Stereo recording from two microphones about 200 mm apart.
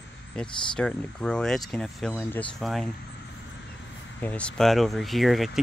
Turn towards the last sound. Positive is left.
turn(degrees=0)  # may be behind; listen again after turning